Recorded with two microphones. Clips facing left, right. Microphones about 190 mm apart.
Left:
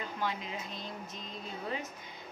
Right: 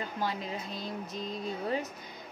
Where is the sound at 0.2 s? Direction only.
35° right (ahead or behind).